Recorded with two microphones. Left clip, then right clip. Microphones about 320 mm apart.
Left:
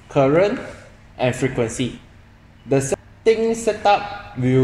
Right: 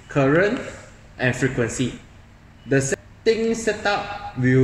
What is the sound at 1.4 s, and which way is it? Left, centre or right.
A woman's voice, centre.